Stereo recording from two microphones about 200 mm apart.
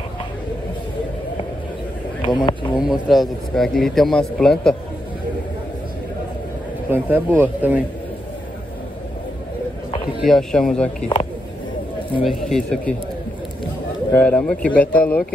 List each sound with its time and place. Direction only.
2.2 s speech: 20° left (ahead or behind)
2.8 s a man's voice: centre (ahead or behind)
6.9 s speech: 10° right (ahead or behind)
10.2 s a man's voice: centre (ahead or behind)
12.2 s a man's voice: centre (ahead or behind)
14.1 s speech: 5° left (ahead or behind)